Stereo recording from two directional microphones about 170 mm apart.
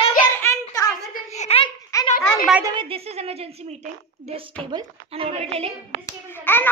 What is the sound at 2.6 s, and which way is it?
A woman's voice, 30° right (ahead or behind).